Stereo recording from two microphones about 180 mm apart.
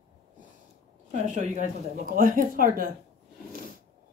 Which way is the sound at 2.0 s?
50° right (ahead or behind).